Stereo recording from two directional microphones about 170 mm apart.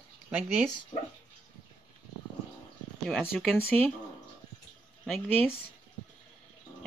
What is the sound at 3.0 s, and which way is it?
Speech, centre (ahead or behind).